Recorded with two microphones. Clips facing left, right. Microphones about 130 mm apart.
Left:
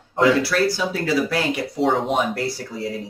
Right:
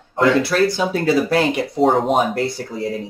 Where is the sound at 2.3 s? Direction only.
20° right (ahead or behind).